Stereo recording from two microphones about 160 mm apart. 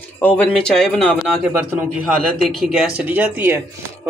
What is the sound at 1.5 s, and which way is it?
Speech, 15° right (ahead or behind).